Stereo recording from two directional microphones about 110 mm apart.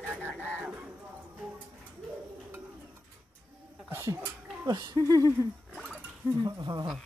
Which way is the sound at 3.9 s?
25° right (ahead or behind).